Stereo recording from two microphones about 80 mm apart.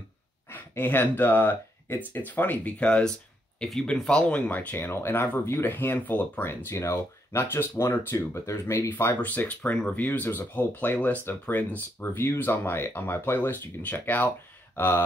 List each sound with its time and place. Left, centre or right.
0.5 s speech: left
8.9 s speech: left